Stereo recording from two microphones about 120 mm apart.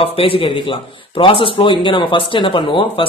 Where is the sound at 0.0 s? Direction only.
50° left (ahead or behind).